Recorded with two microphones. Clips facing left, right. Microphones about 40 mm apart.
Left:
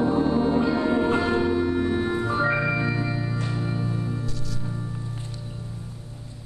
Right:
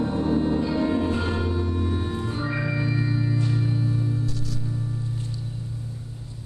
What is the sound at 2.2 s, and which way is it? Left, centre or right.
Music, left.